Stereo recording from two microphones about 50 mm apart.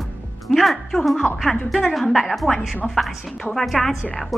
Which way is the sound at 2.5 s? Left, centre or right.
Left.